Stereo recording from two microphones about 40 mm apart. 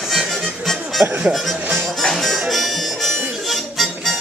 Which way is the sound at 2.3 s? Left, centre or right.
Centre.